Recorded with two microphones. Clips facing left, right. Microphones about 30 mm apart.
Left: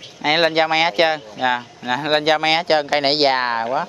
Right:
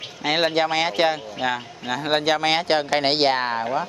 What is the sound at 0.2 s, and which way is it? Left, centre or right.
Speech, centre.